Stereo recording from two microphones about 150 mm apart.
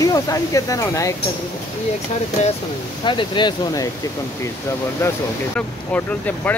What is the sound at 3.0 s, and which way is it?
Speech, 35° left (ahead or behind).